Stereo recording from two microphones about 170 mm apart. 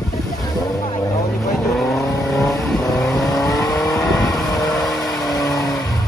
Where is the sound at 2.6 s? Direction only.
Centre (ahead or behind).